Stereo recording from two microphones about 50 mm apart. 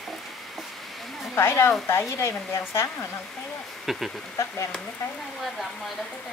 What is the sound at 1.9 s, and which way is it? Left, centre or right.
Speech, left.